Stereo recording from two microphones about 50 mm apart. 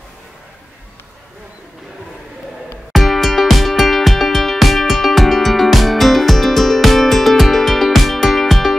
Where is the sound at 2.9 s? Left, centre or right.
Centre.